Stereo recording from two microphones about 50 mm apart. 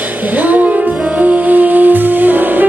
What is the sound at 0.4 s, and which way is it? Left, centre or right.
Music, right.